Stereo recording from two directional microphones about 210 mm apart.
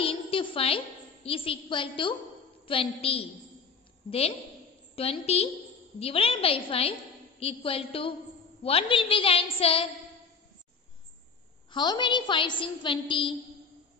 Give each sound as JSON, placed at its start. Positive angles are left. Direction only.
{"t": 0.0, "sound": "a woman's voice", "side_deg": 25}
{"t": 4.9, "sound": "a woman's voice", "side_deg": 30}
{"t": 11.7, "sound": "a woman's voice", "side_deg": 20}